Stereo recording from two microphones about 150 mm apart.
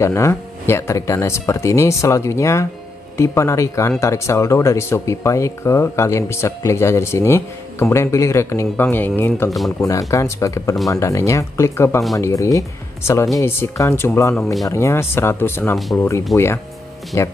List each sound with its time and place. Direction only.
0.0 s speech: 20° left (ahead or behind)
14.3 s speech: centre (ahead or behind)
14.7 s speech: 20° left (ahead or behind); by 16.5 s centre (ahead or behind)